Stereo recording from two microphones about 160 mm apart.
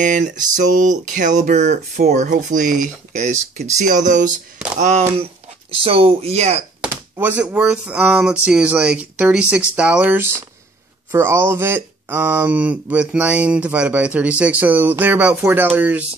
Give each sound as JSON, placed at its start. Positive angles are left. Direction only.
{"t": 0.0, "sound": "speech", "side_deg": -55}
{"t": 5.1, "sound": "speech", "side_deg": -35}
{"t": 6.8, "sound": "speech", "side_deg": -10}